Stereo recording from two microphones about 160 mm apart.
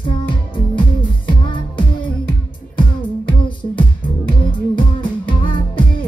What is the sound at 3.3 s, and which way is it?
Music, 30° left (ahead or behind).